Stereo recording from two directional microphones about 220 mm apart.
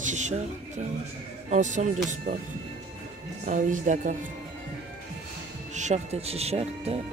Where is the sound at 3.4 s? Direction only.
35° right (ahead or behind).